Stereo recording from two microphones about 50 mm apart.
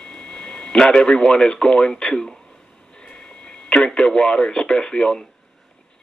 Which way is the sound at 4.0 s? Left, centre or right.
Centre.